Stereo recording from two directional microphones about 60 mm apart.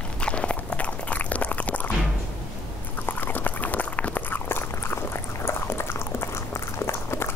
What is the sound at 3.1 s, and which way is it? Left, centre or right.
Dog, left.